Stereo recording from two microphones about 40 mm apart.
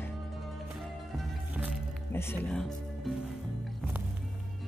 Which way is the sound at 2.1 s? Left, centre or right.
Left.